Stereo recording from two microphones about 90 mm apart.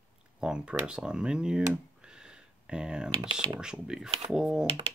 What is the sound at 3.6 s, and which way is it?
Speech, 10° right (ahead or behind).